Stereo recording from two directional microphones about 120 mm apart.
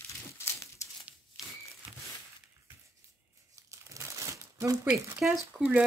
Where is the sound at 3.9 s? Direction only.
25° right (ahead or behind).